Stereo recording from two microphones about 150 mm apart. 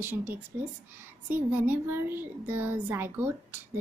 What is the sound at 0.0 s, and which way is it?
A child's voice, 15° right (ahead or behind).